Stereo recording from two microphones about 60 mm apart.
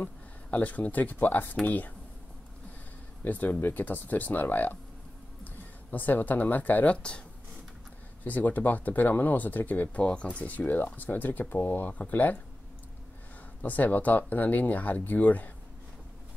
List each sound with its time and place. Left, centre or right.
0.0 s speech: left
3.3 s speech: left
7.0 s speech: centre
8.2 s speech: left
9.9 s speech: centre
13.6 s speech: left